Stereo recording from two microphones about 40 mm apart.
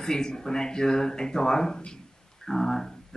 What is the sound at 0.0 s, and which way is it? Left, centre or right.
Speech, centre.